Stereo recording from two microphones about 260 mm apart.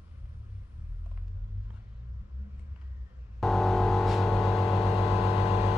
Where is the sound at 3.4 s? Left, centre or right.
Centre.